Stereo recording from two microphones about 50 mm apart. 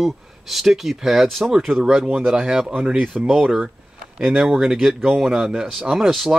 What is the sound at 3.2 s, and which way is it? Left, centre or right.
Speech, centre.